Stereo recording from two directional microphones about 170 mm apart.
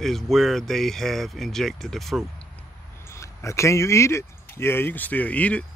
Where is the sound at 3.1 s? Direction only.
15° left (ahead or behind).